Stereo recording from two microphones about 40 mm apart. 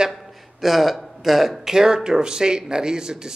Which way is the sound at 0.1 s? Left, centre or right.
Centre.